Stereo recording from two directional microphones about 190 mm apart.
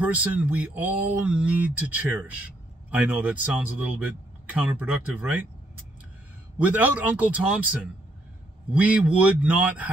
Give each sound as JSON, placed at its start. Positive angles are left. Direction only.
{"t": 0.0, "sound": "speech", "side_deg": -10}
{"t": 6.6, "sound": "speech", "side_deg": -10}